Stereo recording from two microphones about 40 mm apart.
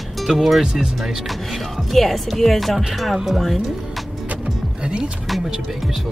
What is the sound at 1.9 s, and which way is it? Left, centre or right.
Speech, centre.